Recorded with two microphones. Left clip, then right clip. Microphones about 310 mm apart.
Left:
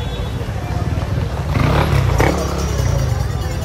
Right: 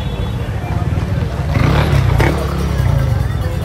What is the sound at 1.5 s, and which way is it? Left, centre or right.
Roaring cats, centre.